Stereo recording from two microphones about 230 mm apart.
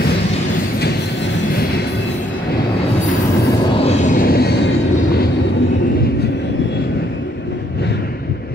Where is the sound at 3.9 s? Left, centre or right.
Left.